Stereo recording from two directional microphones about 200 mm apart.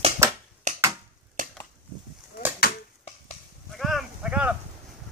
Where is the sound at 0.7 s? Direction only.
35° right (ahead or behind).